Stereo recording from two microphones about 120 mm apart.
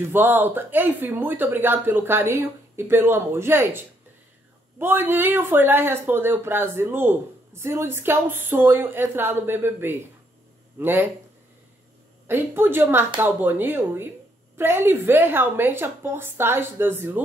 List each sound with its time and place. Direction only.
0.0 s speech: 20° right (ahead or behind)
12.3 s speech: 20° right (ahead or behind)